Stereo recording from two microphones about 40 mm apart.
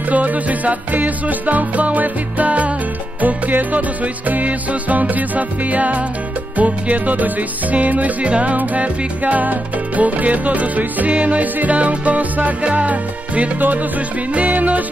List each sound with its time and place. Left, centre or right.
0.1 s music: right
8.3 s music: right